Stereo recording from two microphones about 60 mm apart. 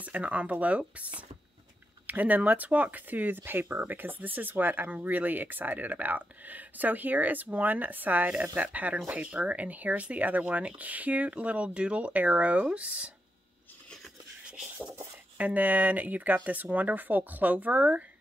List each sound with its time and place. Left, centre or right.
0.0 s speech: right
15.3 s speech: right